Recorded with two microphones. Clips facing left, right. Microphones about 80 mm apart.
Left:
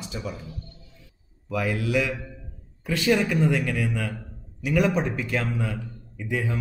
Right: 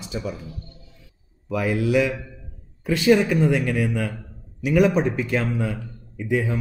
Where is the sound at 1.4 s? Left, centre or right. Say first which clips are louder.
Right 4 dB; centre.